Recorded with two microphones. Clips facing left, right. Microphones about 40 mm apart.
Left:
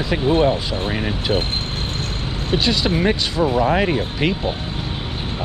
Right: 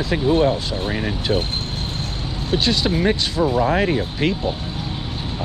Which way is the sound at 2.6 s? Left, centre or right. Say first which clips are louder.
Even; centre.